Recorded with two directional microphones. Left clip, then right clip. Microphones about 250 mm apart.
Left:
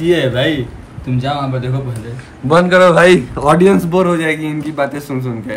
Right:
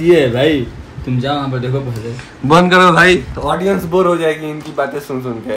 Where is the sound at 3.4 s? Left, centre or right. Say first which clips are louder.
Left 6 dB; left.